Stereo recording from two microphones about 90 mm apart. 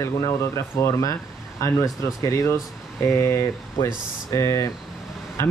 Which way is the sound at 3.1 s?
30° left (ahead or behind).